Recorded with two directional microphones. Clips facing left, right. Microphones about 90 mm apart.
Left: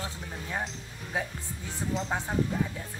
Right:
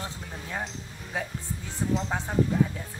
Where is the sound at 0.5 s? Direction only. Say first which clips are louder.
Even; centre (ahead or behind).